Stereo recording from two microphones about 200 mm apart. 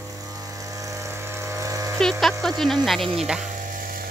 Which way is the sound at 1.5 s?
15° right (ahead or behind).